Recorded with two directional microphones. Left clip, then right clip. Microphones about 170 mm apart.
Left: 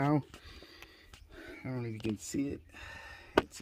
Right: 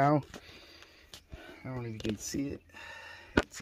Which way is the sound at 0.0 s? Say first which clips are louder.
Right 5 dB; 15° left (ahead or behind).